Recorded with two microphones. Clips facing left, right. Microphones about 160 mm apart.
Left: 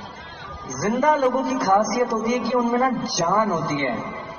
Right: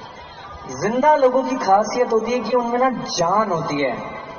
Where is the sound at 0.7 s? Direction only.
20° right (ahead or behind).